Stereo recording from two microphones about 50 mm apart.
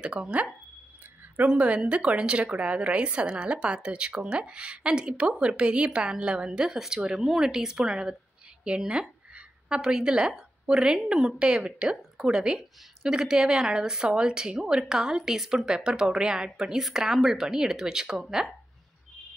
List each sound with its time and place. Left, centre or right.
0.0 s a woman's voice: right